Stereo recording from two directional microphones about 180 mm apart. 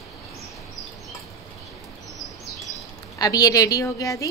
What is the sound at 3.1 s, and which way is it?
A woman's voice, 20° left (ahead or behind).